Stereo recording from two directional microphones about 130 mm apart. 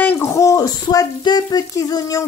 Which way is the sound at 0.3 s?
25° left (ahead or behind).